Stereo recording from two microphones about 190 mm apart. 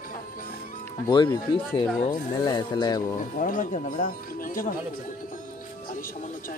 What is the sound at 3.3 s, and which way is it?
Speech, 45° left (ahead or behind).